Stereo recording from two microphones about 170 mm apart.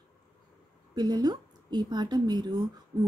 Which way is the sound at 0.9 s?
25° right (ahead or behind).